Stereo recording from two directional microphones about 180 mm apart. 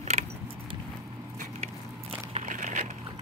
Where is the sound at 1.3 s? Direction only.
35° right (ahead or behind).